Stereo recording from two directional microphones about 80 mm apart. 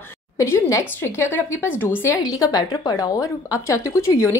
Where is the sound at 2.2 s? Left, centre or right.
Left.